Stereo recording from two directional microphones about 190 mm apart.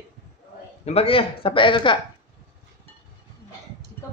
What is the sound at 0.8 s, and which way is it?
A man's voice, 30° left (ahead or behind).